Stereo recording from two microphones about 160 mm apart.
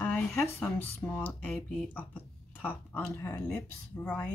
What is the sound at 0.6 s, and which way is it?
Speech, 10° left (ahead or behind).